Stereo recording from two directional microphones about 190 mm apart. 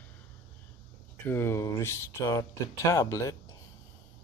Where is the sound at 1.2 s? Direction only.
15° left (ahead or behind).